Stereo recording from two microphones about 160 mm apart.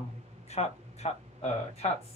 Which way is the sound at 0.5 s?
40° left (ahead or behind).